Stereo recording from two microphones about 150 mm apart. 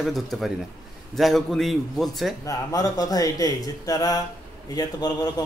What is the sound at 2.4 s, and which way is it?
Speech, 25° left (ahead or behind).